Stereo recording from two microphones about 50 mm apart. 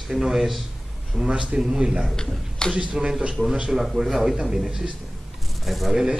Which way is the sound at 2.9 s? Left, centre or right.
Centre.